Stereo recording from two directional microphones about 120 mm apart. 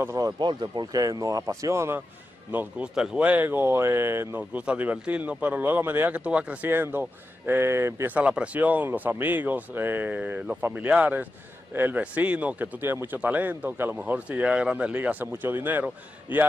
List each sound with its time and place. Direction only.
0.0 s a man's voice: 25° right (ahead or behind)
0.4 s a man's voice: 40° right (ahead or behind); by 16.4 s 15° right (ahead or behind)